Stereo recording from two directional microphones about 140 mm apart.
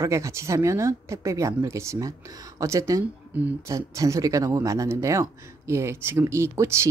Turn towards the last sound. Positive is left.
turn(degrees=-20)  # may be behind; listen again after turning